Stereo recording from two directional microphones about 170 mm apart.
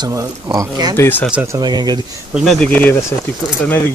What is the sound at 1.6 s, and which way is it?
Speech, 25° right (ahead or behind).